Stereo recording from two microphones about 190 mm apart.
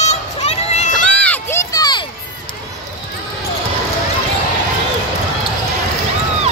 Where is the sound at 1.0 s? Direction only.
10° left (ahead or behind).